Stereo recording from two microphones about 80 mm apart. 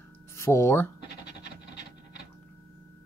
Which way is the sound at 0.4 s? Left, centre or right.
Left.